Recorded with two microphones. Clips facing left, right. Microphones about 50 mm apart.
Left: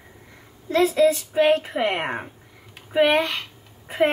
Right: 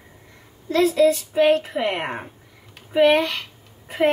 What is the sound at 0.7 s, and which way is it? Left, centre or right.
A woman's voice, centre.